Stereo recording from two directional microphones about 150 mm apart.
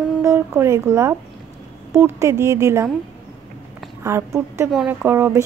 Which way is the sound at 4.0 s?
20° right (ahead or behind).